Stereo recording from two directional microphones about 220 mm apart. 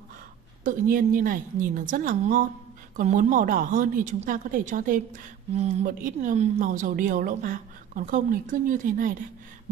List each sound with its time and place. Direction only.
0.7 s a woman's voice: 40° right (ahead or behind)